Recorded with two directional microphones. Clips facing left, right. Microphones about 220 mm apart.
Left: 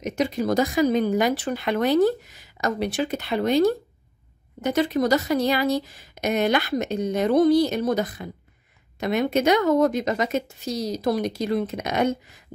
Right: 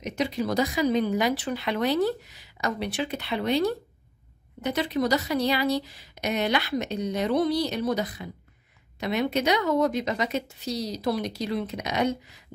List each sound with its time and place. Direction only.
0.0 s speech: 45° left (ahead or behind)